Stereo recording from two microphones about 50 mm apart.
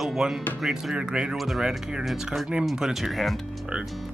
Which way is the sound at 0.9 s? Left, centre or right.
Centre.